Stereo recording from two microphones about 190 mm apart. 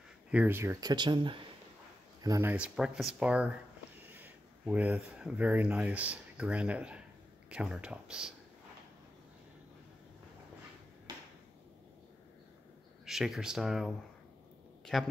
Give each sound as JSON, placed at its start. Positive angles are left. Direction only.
{"t": 0.3, "sound": "speech", "side_deg": -10}
{"t": 2.5, "sound": "speech", "side_deg": -5}
{"t": 11.1, "sound": "a sound", "side_deg": -20}
{"t": 13.0, "sound": "speech", "side_deg": 0}